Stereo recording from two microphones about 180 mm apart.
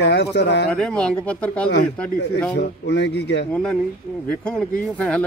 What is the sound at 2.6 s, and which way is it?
Speech, 70° left (ahead or behind).